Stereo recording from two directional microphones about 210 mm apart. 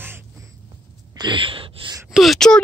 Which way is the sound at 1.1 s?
25° right (ahead or behind).